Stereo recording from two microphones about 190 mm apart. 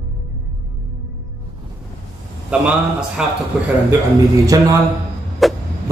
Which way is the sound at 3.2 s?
5° right (ahead or behind).